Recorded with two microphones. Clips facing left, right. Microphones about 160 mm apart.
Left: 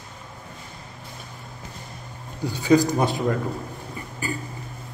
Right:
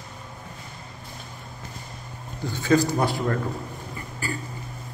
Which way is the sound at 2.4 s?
15° left (ahead or behind).